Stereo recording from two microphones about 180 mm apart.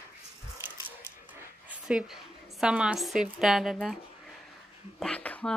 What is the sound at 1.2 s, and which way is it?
Dog, 5° right (ahead or behind).